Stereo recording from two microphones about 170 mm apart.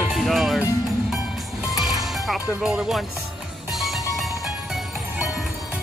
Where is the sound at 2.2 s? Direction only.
Centre (ahead or behind).